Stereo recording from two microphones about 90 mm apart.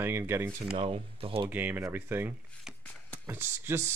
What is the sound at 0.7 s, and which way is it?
Speech, 90° right.